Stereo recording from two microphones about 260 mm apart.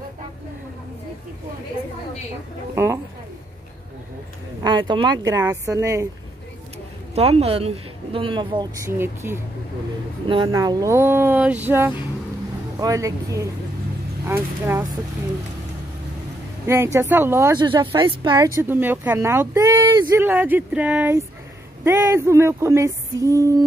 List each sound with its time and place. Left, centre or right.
2.7 s speech: centre
4.6 s speech: centre
7.2 s a woman's voice: right
16.6 s speech: centre